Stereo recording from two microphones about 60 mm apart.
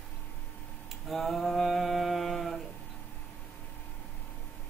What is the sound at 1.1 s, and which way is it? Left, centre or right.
Speech, centre.